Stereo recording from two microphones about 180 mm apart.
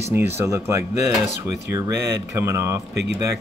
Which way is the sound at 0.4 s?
15° right (ahead or behind).